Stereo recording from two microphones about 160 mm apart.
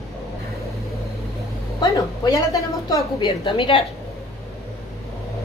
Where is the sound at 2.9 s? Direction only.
30° left (ahead or behind).